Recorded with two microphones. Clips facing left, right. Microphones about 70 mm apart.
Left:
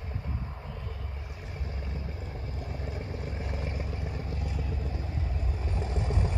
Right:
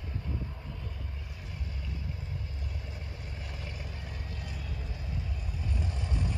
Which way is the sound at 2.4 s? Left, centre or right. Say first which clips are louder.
Left 6 dB; left.